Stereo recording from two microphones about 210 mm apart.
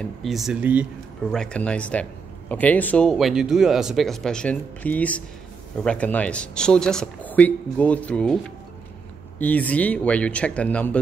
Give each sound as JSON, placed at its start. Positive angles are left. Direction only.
{"t": 0.0, "sound": "speech", "side_deg": 0}
{"t": 1.3, "sound": "speech", "side_deg": 5}
{"t": 9.4, "sound": "speech", "side_deg": 5}